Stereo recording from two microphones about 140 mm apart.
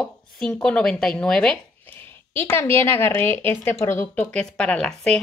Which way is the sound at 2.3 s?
15° left (ahead or behind).